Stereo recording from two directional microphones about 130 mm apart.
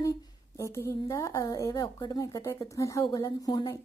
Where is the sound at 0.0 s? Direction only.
25° left (ahead or behind).